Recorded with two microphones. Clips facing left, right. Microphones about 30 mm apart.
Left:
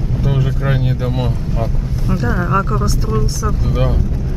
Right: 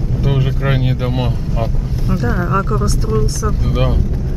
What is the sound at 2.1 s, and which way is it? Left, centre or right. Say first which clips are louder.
Speech: even; centre.